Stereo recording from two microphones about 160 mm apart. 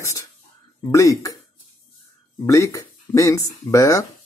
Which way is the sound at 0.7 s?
20° left (ahead or behind).